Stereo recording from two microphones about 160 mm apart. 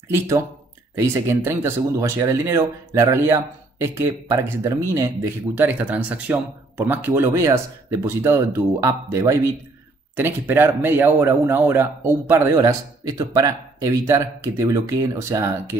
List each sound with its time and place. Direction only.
0.9 s speech: 15° right (ahead or behind)